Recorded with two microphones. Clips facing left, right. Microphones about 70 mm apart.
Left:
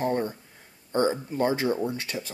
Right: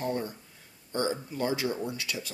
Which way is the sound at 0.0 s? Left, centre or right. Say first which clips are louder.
Left 5 dB; left.